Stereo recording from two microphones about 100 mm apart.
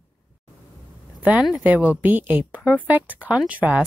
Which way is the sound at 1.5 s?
15° right (ahead or behind).